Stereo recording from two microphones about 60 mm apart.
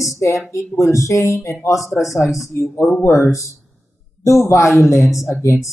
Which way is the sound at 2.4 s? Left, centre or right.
Left.